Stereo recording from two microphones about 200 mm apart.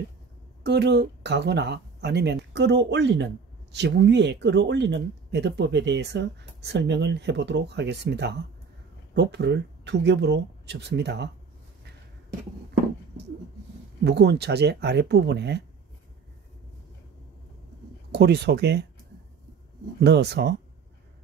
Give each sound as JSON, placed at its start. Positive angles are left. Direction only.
{"t": 0.7, "sound": "speech", "side_deg": -55}
{"t": 14.0, "sound": "speech", "side_deg": -60}
{"t": 18.1, "sound": "speech", "side_deg": -55}
{"t": 20.0, "sound": "speech", "side_deg": -55}